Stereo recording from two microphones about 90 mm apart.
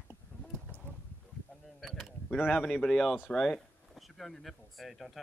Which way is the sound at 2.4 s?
20° left (ahead or behind).